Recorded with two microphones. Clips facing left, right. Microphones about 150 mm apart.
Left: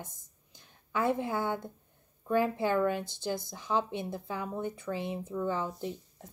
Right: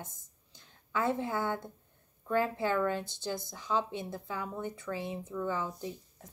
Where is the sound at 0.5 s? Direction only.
20° left (ahead or behind).